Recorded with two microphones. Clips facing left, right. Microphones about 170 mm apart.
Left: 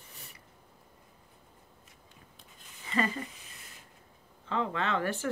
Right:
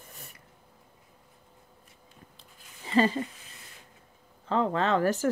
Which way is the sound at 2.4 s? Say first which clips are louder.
Right 4 dB; 30° right (ahead or behind).